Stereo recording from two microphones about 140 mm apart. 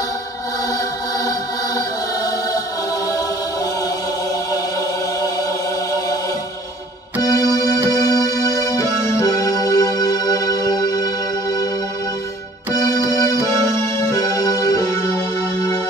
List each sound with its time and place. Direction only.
7.2 s music: 25° left (ahead or behind)
12.7 s music: 25° left (ahead or behind)